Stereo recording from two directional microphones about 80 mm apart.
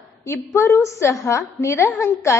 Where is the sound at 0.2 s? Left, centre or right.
Left.